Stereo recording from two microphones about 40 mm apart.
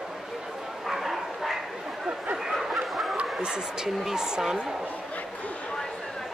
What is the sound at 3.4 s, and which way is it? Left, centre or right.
Speech, centre.